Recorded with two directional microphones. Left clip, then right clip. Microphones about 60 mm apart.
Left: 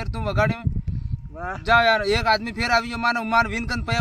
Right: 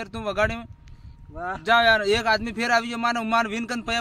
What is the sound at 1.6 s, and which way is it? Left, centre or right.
A man's voice, right.